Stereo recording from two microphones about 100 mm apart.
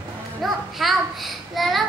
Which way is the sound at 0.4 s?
Centre (ahead or behind).